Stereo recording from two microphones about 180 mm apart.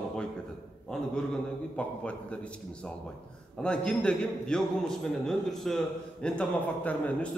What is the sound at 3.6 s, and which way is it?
A man's voice, 5° left (ahead or behind).